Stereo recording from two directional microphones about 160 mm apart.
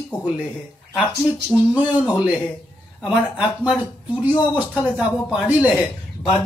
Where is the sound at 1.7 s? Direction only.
5° right (ahead or behind).